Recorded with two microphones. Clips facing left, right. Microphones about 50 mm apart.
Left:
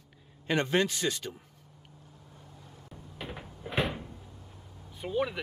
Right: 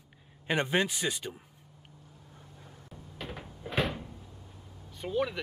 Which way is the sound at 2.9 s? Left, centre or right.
Centre.